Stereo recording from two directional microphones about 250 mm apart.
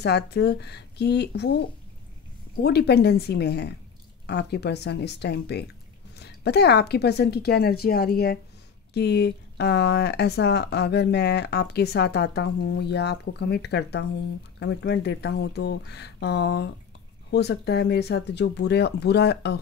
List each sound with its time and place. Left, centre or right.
0.0 s speech: left
2.6 s speech: left